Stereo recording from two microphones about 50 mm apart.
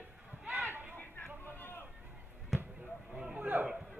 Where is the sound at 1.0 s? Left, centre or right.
Left.